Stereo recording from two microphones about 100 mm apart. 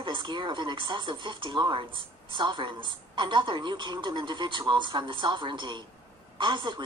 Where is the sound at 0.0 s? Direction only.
55° right (ahead or behind).